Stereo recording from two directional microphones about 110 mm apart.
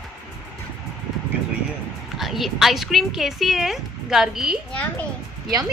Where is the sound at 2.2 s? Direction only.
Centre (ahead or behind).